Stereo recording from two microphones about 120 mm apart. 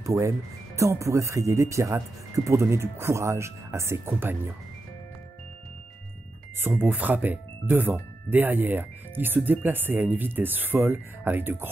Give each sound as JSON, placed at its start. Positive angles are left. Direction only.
{"t": 0.0, "sound": "speech", "side_deg": -25}
{"t": 6.6, "sound": "speech", "side_deg": -15}